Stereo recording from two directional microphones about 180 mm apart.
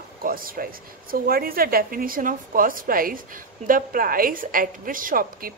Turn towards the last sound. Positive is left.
turn(degrees=-50)  # may be behind; listen again after turning